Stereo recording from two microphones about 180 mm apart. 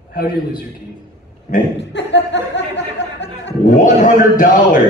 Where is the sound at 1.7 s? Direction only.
80° left.